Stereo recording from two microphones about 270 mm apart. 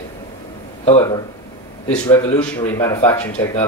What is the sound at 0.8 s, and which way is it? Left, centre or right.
Speech, centre.